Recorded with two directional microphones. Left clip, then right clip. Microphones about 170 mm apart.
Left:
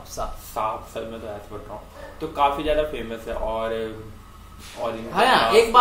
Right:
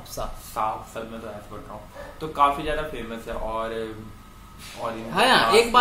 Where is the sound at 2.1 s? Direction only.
15° left (ahead or behind).